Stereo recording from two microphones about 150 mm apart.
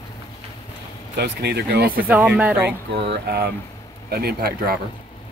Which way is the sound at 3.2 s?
90° right.